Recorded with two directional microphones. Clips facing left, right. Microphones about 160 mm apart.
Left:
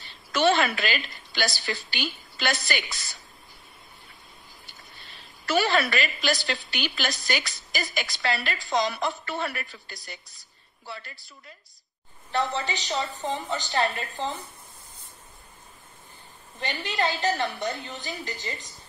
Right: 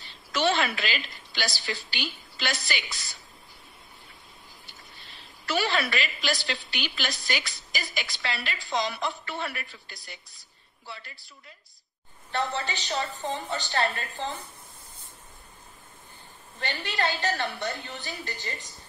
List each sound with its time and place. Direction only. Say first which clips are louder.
0.3 s a woman's voice: left 3 dB; 50° left (ahead or behind)
5.5 s a woman's voice: left 4 dB; 45° left (ahead or behind)
12.3 s a woman's voice: left 2 dB; 15° left (ahead or behind)
16.5 s a woman's voice: left 2 dB; 20° left (ahead or behind)